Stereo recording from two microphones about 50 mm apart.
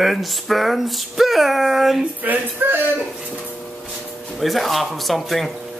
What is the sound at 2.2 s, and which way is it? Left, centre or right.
Music, right.